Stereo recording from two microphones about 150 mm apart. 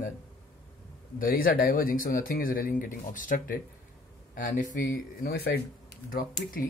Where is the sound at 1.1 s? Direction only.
75° left (ahead or behind); by 5.6 s 90° left.